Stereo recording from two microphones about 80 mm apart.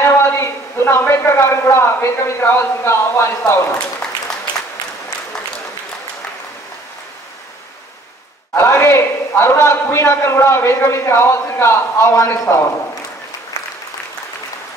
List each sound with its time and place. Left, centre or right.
0.0 s a man's voice: left
8.5 s a man's voice: left